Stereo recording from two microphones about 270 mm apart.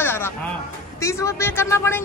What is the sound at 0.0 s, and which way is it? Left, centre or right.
Music, centre.